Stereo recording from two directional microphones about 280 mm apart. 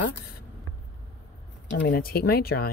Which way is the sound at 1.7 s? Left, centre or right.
Left.